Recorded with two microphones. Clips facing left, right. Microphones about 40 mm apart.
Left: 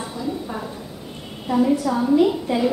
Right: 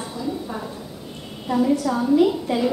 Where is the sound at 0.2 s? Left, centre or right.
Centre.